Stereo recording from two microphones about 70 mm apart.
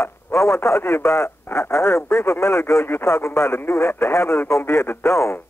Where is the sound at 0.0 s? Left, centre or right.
Left.